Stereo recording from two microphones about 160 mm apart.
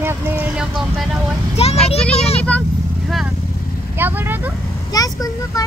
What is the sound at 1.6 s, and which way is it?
Speech, 40° left (ahead or behind).